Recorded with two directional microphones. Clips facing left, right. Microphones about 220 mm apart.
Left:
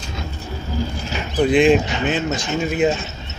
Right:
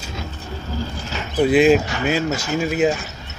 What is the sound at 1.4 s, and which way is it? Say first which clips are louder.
Speech: even; 5° right (ahead or behind).